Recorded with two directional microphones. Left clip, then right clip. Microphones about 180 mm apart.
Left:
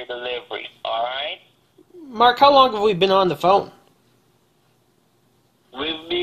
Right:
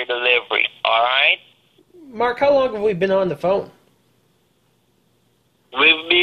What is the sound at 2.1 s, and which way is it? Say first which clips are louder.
Speech: left 4 dB; 20° left (ahead or behind).